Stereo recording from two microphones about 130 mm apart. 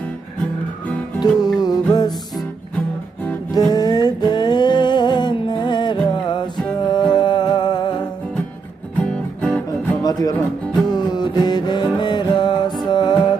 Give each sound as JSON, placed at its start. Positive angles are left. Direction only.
{"t": 1.2, "sound": "music", "side_deg": 30}
{"t": 3.5, "sound": "music", "side_deg": 30}
{"t": 8.9, "sound": "music", "side_deg": 10}
{"t": 10.9, "sound": "music", "side_deg": 35}